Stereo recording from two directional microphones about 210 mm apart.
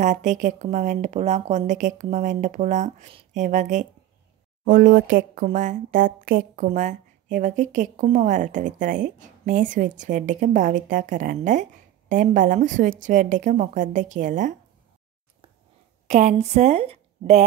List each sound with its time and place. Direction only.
0.0 s speech: 35° right (ahead or behind)
16.1 s a woman's voice: 35° right (ahead or behind)